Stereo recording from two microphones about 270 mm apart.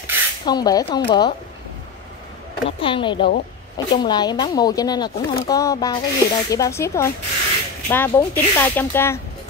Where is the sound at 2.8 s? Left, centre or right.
Centre.